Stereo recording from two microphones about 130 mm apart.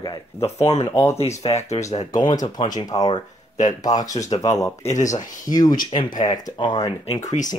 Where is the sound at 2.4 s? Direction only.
35° left (ahead or behind).